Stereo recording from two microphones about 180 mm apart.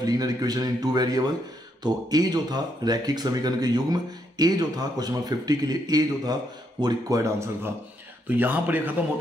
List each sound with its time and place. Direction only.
0.0 s speech: 20° right (ahead or behind)